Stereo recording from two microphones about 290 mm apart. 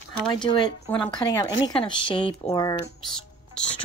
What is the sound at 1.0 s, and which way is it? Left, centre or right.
Speech, centre.